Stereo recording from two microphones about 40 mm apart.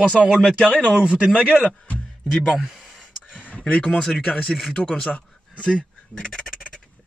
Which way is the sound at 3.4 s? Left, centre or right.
Left.